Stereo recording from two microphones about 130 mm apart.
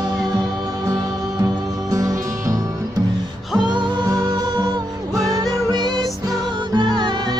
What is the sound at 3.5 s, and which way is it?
Music, 35° right (ahead or behind).